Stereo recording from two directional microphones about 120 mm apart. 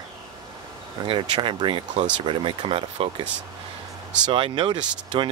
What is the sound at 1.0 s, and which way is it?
Speech, 40° right (ahead or behind).